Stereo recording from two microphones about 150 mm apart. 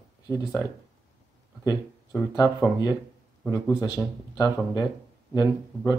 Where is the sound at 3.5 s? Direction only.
25° left (ahead or behind).